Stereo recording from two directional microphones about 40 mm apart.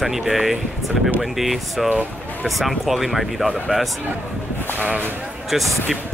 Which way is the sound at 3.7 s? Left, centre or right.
Right.